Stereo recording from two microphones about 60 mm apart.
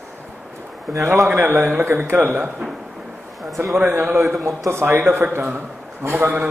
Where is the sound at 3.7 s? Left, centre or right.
Right.